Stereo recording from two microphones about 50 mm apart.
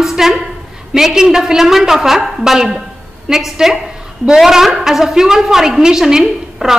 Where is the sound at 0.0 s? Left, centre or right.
Centre.